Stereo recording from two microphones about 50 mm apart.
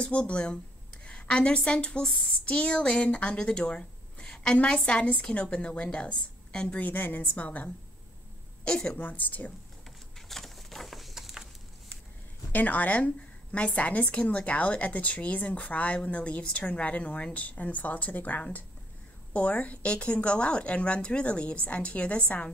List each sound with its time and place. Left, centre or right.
0.0 s a woman's voice: left
6.8 s a woman's voice: left
8.6 s a woman's voice: left
9.0 s a woman's voice: left
10.1 s a sound: centre
12.5 s a woman's voice: left